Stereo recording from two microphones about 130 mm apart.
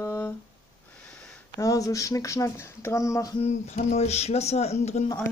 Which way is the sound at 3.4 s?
60° left (ahead or behind).